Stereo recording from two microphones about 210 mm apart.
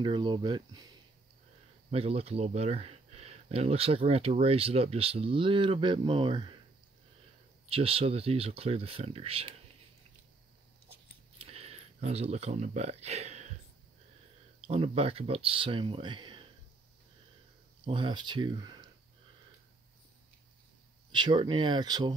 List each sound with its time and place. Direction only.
0.0 s speech: 20° right (ahead or behind)
7.7 s speech: 25° right (ahead or behind)
11.3 s a sound: 30° right (ahead or behind)
14.7 s speech: 30° right (ahead or behind)
17.8 s speech: 20° right (ahead or behind)
21.1 s speech: 20° right (ahead or behind)